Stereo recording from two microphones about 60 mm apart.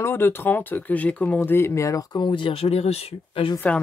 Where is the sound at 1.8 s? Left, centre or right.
Left.